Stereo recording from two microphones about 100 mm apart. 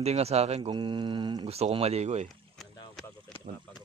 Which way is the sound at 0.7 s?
50° right (ahead or behind).